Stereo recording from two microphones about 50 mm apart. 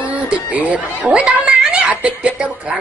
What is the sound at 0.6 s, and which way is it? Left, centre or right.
Speech, right.